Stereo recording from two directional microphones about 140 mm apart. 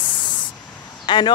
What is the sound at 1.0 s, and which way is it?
Speech, 35° left (ahead or behind).